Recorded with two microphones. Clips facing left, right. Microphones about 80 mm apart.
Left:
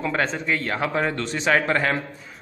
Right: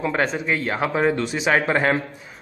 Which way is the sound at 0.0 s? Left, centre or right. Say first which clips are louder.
Right 2 dB; centre.